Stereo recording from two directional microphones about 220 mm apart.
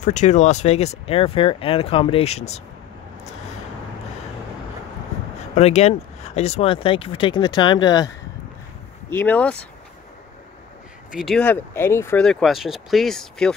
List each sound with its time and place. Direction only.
0.0 s speech: 30° left (ahead or behind)
5.8 s speech: 30° left (ahead or behind)
9.1 s speech: 5° left (ahead or behind)
11.1 s speech: centre (ahead or behind)